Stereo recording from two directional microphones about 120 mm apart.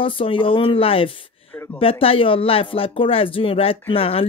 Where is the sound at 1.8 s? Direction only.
50° left (ahead or behind).